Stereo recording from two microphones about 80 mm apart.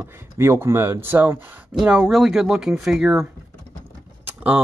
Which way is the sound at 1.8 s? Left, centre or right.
Centre.